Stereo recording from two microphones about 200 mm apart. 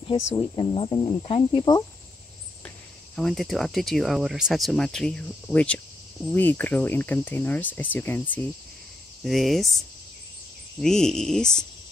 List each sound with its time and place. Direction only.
0.1 s speech: 25° left (ahead or behind)
3.2 s speech: centre (ahead or behind)